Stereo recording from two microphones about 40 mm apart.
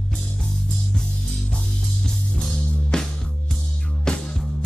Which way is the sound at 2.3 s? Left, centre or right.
Centre.